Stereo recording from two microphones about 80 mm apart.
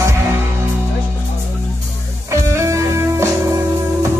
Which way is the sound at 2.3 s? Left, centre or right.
Right.